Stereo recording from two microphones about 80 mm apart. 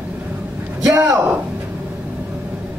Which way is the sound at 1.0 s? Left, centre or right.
Centre.